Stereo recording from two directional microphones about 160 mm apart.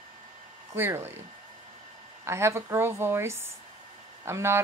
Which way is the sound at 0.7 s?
15° right (ahead or behind).